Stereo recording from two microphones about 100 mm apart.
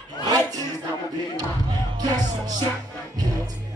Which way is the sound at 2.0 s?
40° right (ahead or behind).